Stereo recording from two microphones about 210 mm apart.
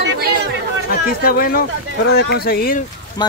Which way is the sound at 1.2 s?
45° left (ahead or behind).